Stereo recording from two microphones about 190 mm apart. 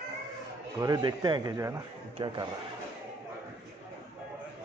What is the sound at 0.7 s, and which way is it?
A man's voice, 20° right (ahead or behind).